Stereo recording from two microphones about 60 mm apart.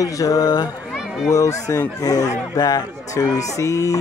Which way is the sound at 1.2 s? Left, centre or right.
Left.